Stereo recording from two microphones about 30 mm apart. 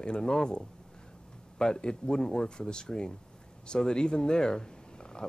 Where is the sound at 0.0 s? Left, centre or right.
Left.